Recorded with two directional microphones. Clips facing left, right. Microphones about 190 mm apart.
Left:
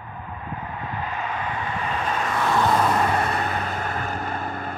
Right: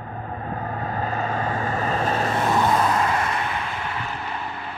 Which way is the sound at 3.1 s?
35° left (ahead or behind).